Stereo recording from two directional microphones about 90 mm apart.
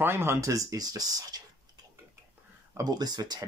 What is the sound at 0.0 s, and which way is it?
Speech, 25° right (ahead or behind).